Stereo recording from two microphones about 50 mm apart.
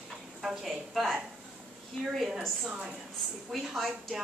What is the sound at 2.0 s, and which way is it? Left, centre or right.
Speech, centre.